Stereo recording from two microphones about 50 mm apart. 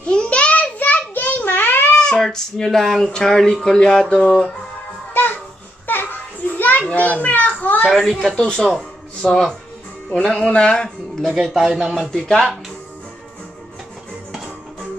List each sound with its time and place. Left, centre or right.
0.0 s child singing: left
0.7 s a sound: left
2.0 s child singing: centre
2.2 s speech: centre
5.1 s babbling: left
5.9 s children playing: left
7.8 s speech: centre
11.5 s speech: centre
12.0 s speech: centre
14.3 s music: centre